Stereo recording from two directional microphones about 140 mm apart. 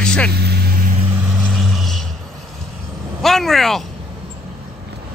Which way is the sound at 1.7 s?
Centre (ahead or behind).